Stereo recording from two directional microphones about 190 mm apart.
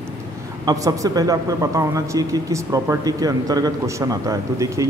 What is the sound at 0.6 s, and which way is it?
Speech, 20° right (ahead or behind).